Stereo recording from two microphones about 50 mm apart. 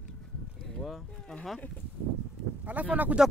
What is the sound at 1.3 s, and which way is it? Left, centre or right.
Speech, centre.